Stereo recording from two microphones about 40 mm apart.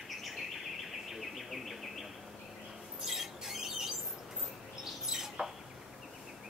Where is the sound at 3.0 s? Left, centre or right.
Centre.